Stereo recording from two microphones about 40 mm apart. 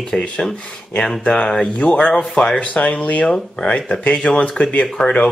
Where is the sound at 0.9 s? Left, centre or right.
Left.